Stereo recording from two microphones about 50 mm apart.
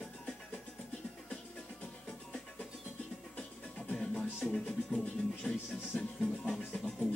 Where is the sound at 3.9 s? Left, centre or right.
Centre.